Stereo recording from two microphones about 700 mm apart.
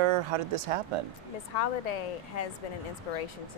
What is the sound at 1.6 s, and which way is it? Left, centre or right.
Speech, left.